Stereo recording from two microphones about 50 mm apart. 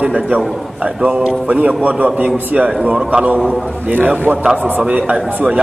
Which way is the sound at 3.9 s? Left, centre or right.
Right.